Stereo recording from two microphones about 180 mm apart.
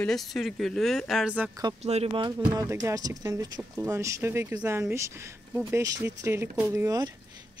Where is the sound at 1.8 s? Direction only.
35° right (ahead or behind).